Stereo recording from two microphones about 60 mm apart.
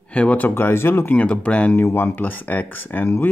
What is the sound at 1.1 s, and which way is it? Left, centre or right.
Speech, centre.